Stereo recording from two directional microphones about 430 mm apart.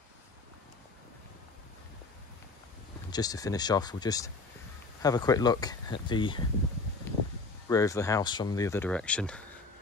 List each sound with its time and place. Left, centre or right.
3.1 s speech: centre
7.6 s speech: centre